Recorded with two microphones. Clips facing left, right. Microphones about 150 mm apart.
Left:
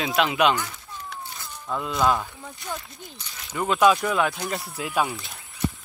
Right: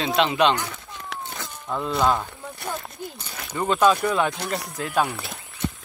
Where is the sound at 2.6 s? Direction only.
60° right (ahead or behind).